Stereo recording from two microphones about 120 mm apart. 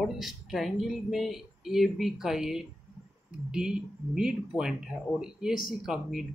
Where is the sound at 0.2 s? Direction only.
Centre (ahead or behind).